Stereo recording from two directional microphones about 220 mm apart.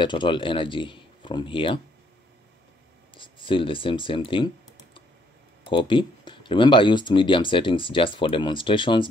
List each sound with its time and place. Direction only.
0.0 s speech: 20° left (ahead or behind)
3.2 s speech: 20° left (ahead or behind)
5.6 s speech: 20° left (ahead or behind)